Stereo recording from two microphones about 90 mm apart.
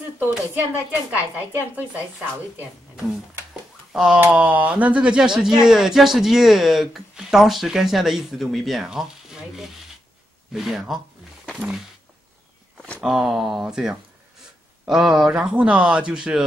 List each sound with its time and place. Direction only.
0.9 s a woman's voice: 20° right (ahead or behind)
3.9 s speech: 5° right (ahead or behind)
4.2 s speech: 20° right (ahead or behind)
13.0 s a woman's voice: centre (ahead or behind)